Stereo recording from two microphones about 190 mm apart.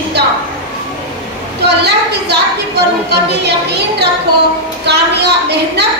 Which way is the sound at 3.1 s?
60° right (ahead or behind).